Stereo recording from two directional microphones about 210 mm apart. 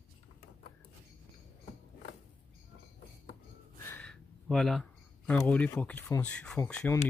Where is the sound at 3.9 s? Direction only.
5° left (ahead or behind).